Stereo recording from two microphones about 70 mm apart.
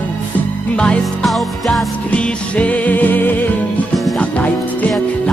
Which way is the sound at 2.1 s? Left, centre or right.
Centre.